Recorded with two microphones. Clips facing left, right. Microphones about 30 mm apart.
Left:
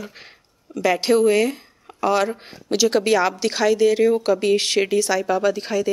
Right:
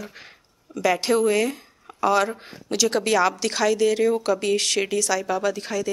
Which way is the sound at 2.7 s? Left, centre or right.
Centre.